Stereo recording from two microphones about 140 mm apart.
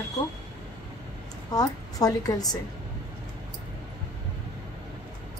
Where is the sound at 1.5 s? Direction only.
25° left (ahead or behind).